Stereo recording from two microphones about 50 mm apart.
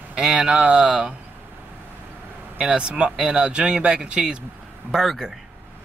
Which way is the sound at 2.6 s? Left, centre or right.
Right.